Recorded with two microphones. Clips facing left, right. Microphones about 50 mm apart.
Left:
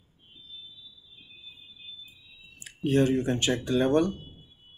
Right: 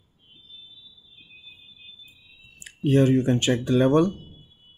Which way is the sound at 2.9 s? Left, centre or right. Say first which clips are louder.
Right 5 dB; right.